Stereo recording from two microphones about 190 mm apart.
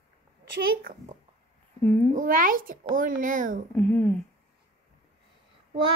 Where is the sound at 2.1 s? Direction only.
45° right (ahead or behind).